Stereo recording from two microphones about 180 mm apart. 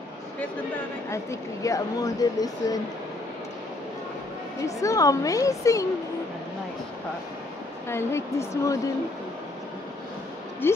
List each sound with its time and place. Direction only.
1.1 s speech: 15° left (ahead or behind)
4.6 s a woman's voice: 20° left (ahead or behind)
7.9 s a woman's voice: 15° left (ahead or behind)
10.6 s a woman's voice: 10° left (ahead or behind)